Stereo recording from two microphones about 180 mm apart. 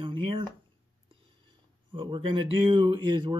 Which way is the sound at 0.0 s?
30° right (ahead or behind).